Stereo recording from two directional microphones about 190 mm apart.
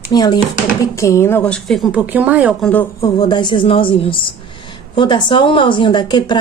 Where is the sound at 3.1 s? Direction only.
25° left (ahead or behind).